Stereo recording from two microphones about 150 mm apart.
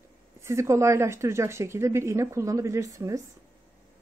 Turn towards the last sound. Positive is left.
turn(degrees=-20)  # may be behind; listen again after turning